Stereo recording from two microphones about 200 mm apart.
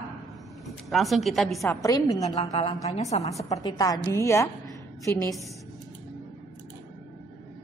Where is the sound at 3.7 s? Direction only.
20° left (ahead or behind).